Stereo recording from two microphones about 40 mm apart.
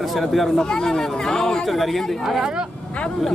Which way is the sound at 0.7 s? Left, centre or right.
Centre.